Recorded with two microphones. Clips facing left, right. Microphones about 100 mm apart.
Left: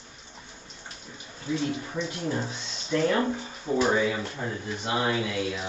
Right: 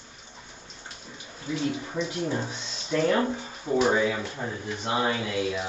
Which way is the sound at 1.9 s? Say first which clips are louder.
Right 1 dB; 5° right (ahead or behind).